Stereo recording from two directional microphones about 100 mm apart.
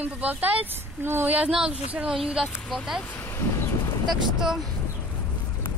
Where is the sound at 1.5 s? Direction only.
5° right (ahead or behind).